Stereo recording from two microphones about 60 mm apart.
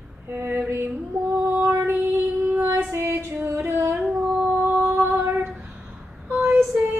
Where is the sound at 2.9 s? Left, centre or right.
Right.